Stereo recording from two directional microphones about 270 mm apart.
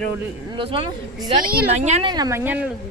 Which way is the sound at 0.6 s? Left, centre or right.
Centre.